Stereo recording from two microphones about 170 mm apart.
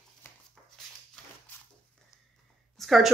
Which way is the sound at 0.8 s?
Centre (ahead or behind).